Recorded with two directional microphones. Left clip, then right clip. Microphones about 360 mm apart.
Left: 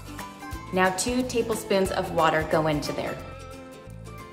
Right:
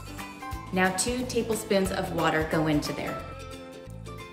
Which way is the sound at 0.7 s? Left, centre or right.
Centre.